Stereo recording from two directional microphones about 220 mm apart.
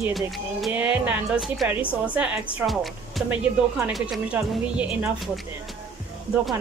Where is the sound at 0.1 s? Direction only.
Centre (ahead or behind).